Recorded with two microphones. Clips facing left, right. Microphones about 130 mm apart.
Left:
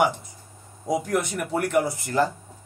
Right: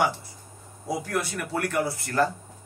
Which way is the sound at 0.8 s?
20° left (ahead or behind).